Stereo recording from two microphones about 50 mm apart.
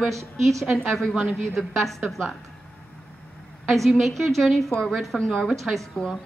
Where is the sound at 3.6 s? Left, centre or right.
Centre.